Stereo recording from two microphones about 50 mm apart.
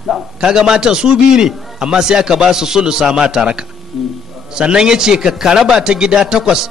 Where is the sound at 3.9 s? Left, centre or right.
Centre.